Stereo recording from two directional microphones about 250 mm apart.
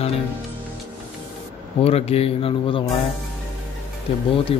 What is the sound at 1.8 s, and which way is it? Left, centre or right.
Speech, left.